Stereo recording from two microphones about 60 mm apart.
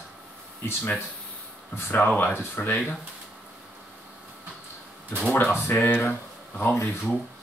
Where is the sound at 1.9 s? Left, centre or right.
Left.